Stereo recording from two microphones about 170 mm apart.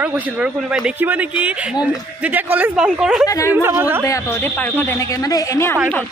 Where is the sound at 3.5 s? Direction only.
15° right (ahead or behind).